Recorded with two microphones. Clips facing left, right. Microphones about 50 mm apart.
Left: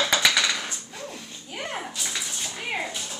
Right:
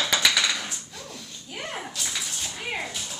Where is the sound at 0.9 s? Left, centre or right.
Centre.